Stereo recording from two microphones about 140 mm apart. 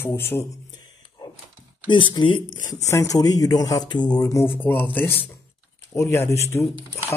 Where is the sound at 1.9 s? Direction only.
35° left (ahead or behind).